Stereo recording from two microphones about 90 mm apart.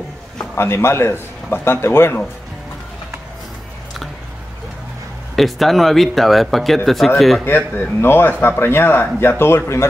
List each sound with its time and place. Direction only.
0.6 s a man's voice: 30° left (ahead or behind)
5.3 s speech: centre (ahead or behind)
7.4 s a man's voice: 20° left (ahead or behind)